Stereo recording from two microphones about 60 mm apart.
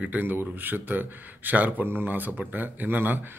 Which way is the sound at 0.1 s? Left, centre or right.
Right.